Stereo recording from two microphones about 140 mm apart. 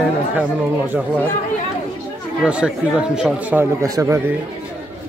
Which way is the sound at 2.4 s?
5° right (ahead or behind).